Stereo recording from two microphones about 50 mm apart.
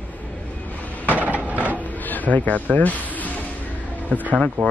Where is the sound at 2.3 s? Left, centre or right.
Left.